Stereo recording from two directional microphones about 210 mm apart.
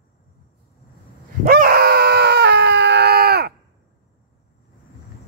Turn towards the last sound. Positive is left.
turn(degrees=-50)  # may be behind; listen again after turning